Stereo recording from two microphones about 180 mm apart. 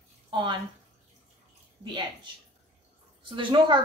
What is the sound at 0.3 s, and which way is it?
Speech, 25° right (ahead or behind).